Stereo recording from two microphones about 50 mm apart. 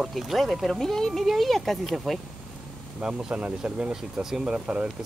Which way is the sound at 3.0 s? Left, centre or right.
Right.